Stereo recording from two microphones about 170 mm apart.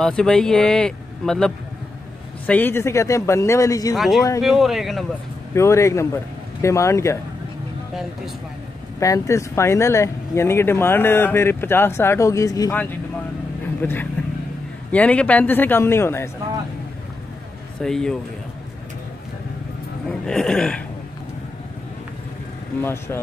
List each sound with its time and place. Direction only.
0.0 s speech: 5° left (ahead or behind); by 3.9 s 20° left (ahead or behind)
3.9 s speech: centre (ahead or behind)
5.5 s speech: 15° left (ahead or behind)
9.0 s speech: 20° left (ahead or behind)
13.7 s a man's voice: 10° left (ahead or behind)
17.8 s speech: 5° left (ahead or behind)
20.1 s speech: 5° left (ahead or behind)
22.8 s speech: 15° left (ahead or behind)